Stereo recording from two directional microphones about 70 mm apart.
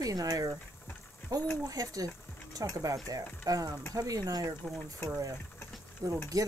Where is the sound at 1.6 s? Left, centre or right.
Right.